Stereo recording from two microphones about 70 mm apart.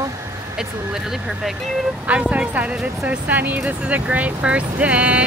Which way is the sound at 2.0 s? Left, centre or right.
Centre.